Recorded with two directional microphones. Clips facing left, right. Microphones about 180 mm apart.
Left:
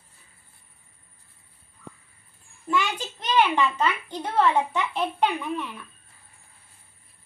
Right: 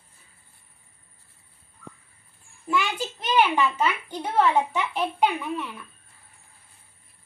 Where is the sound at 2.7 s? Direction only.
5° right (ahead or behind).